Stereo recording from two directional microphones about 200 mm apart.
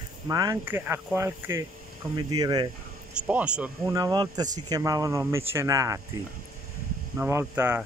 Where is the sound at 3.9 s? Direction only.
20° right (ahead or behind).